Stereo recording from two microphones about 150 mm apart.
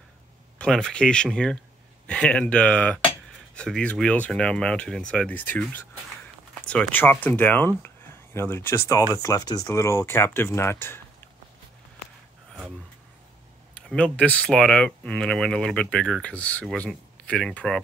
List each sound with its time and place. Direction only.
0.6 s speech: 5° left (ahead or behind)
13.7 s speech: 5° left (ahead or behind)